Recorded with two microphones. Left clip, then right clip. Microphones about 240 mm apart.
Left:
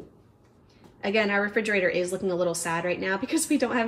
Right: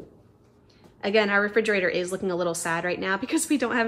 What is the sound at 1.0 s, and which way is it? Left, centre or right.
Speech, right.